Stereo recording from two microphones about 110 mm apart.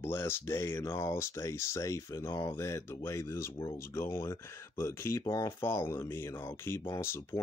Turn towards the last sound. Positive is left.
turn(degrees=25)  # may be behind; listen again after turning